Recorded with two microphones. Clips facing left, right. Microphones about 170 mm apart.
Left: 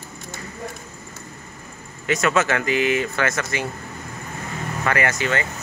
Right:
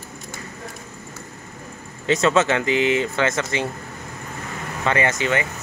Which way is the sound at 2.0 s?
25° right (ahead or behind).